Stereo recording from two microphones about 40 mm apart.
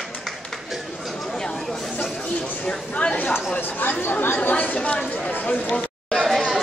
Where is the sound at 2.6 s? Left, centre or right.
Left.